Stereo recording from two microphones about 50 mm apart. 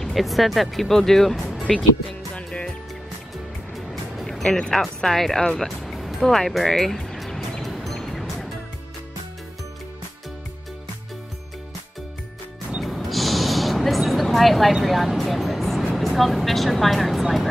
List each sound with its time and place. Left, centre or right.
0.0 s speech: centre
2.3 s music: left
3.7 s music: centre
4.5 s speech: centre
7.6 s music: centre
12.8 s a sound: centre
15.9 s speech: centre